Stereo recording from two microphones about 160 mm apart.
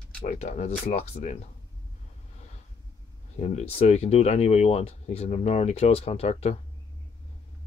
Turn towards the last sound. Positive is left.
turn(degrees=40)  # may be behind; listen again after turning